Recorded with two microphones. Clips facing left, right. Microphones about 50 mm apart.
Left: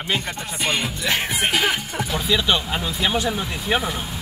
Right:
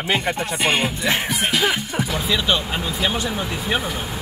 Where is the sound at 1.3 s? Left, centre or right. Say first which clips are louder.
Even; left.